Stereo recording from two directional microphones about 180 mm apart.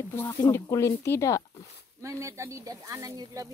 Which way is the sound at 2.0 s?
15° right (ahead or behind).